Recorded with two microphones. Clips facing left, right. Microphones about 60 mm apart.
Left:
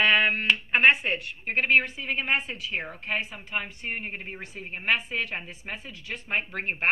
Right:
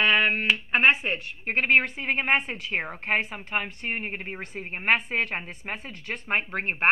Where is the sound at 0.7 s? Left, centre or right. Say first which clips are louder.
Left 1 dB; right.